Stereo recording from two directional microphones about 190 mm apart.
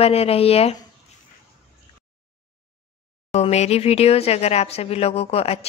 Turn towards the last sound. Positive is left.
turn(degrees=30)  # may be behind; listen again after turning